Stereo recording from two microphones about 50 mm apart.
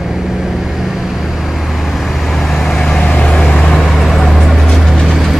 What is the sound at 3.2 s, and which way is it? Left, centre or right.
Vehicle, left.